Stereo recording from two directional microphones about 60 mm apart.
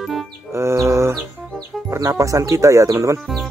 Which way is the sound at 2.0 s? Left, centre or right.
Right.